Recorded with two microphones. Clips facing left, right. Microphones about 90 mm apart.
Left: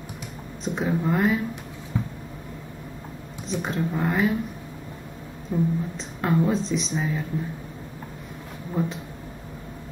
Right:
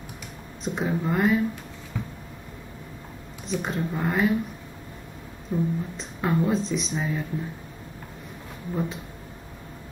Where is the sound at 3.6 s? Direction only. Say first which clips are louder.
Left 3 dB; centre (ahead or behind).